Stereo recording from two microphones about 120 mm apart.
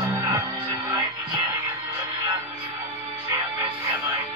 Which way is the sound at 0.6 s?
35° right (ahead or behind).